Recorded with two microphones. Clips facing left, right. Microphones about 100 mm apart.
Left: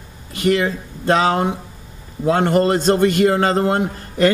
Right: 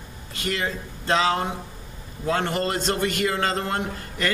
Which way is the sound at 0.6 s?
45° left (ahead or behind).